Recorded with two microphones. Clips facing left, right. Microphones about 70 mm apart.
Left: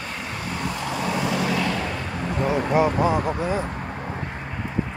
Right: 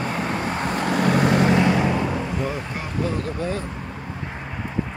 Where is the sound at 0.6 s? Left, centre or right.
Right.